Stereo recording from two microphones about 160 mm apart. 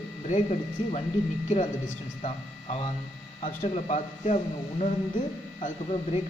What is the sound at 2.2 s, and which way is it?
Speech, 35° left (ahead or behind).